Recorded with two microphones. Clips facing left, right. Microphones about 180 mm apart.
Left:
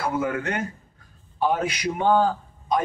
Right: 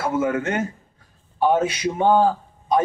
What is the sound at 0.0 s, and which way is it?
A man's voice, 25° right (ahead or behind).